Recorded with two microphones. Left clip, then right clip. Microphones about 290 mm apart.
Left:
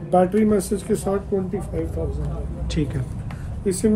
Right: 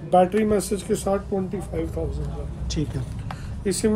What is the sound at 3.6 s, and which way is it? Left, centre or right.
Speech, centre.